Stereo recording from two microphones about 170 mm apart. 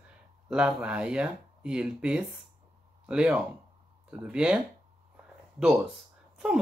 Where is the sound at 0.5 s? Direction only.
5° right (ahead or behind).